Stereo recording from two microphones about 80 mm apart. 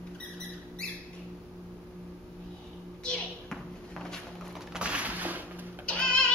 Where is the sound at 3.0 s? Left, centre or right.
Centre.